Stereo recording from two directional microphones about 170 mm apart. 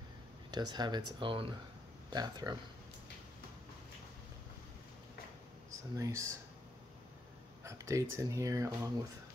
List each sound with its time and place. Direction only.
0.5 s speech: 25° right (ahead or behind)
5.9 s speech: 20° right (ahead or behind)
7.6 s speech: 15° right (ahead or behind)